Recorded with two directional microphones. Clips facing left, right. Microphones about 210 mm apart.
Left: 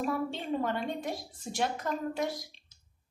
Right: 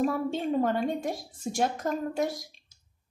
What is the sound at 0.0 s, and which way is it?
Speech, 45° right (ahead or behind).